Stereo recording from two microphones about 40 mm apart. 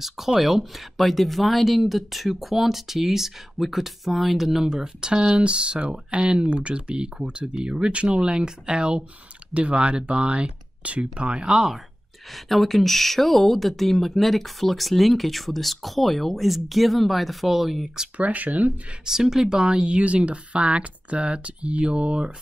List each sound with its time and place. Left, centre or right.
0.0 s speech: centre
4.6 s speech: centre
12.4 s speech: centre
18.1 s speech: right
19.0 s speech: centre